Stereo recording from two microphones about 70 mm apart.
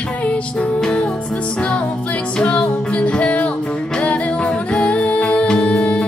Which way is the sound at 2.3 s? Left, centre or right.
Centre.